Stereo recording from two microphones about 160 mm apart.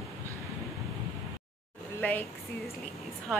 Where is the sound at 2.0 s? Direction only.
10° left (ahead or behind).